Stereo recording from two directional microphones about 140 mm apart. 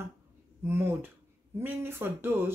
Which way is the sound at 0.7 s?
15° right (ahead or behind).